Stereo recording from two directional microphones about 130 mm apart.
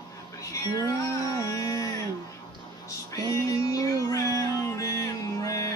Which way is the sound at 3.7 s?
25° left (ahead or behind).